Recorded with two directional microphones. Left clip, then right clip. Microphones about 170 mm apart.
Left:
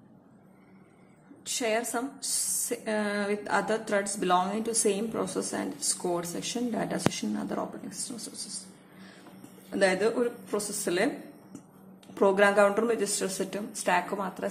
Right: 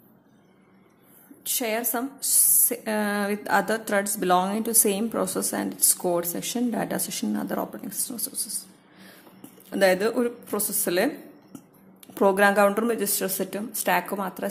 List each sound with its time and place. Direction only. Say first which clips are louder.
1.4 s a woman's voice: right 1 dB; 30° right (ahead or behind)
9.7 s a woman's voice: right 4 dB; 35° right (ahead or behind)
12.1 s a woman's voice: right 3 dB; 35° right (ahead or behind)